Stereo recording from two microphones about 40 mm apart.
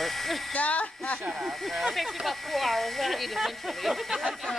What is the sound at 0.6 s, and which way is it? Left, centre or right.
Speech, left.